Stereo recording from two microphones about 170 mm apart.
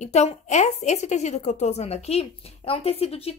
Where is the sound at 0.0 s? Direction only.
40° left (ahead or behind).